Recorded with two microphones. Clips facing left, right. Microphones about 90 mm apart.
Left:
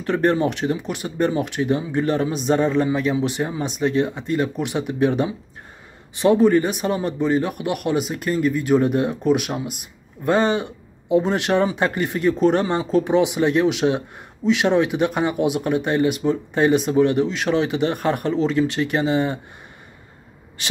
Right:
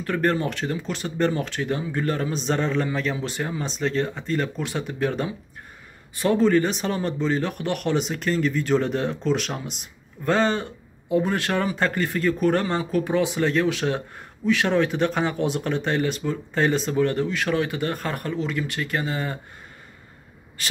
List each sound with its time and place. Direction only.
0.0 s speech: 20° left (ahead or behind)